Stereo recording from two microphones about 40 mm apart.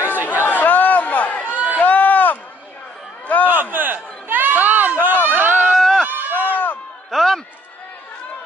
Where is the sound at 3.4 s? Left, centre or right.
Right.